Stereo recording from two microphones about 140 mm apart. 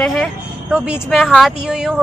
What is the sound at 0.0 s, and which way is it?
Speech, centre (ahead or behind).